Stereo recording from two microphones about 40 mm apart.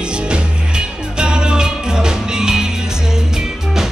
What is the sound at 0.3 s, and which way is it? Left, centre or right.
Music, right.